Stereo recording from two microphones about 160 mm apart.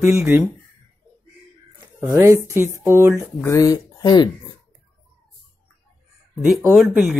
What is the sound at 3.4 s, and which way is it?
Speech, 20° left (ahead or behind).